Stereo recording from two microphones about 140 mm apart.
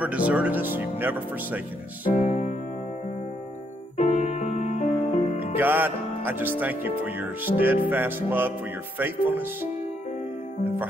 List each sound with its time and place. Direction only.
0.0 s speech: 10° right (ahead or behind)
2.1 s music: 55° left (ahead or behind)
3.9 s music: 55° left (ahead or behind)
5.6 s music: 15° right (ahead or behind)
6.6 s speech: 15° right (ahead or behind)